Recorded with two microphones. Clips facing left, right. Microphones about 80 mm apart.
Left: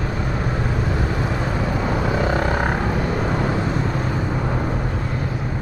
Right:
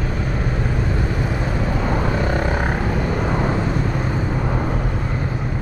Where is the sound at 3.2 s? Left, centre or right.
Centre.